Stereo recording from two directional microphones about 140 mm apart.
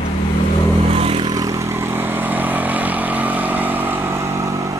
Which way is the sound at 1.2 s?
25° right (ahead or behind).